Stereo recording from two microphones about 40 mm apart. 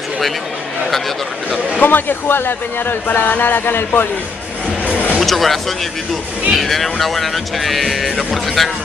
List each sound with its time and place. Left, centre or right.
1.8 s speech: left
5.2 s speech: centre